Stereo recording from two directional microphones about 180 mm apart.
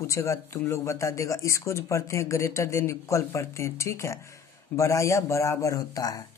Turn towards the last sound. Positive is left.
turn(degrees=20)  # may be behind; listen again after turning